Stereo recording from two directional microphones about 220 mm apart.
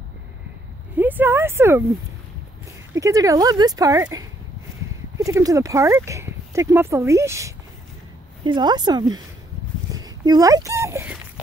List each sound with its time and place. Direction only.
0.9 s speech: 10° right (ahead or behind)
2.9 s a woman's voice: 15° right (ahead or behind)
9.9 s a sound: 15° right (ahead or behind)